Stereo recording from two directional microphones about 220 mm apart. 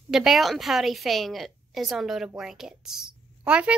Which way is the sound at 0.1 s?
Centre (ahead or behind).